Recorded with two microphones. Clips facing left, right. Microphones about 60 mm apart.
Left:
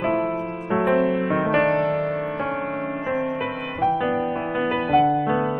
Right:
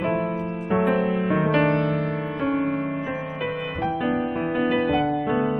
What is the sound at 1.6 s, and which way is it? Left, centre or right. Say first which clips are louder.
Music: left 1 dB; left.